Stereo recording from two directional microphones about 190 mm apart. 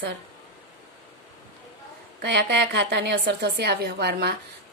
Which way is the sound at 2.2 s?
60° right (ahead or behind).